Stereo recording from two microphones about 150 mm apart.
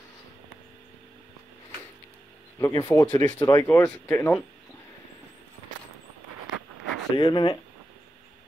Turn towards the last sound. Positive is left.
turn(degrees=30)  # may be behind; listen again after turning